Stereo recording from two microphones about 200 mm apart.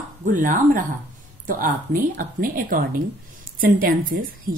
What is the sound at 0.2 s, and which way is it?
A woman's voice, 40° right (ahead or behind).